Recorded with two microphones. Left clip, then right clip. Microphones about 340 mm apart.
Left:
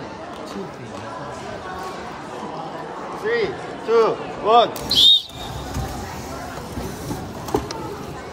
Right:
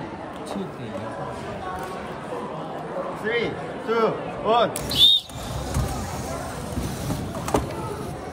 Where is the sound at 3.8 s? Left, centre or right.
Left.